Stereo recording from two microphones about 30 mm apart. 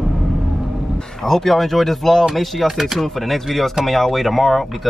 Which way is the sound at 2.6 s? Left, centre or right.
Centre.